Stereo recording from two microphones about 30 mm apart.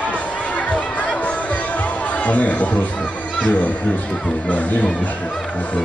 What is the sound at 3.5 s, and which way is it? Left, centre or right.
A man's voice, left.